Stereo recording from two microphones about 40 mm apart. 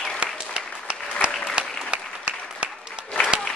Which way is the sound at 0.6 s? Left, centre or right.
Right.